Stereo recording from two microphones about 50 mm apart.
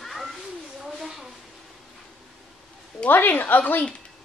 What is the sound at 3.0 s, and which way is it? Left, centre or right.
Speech, left.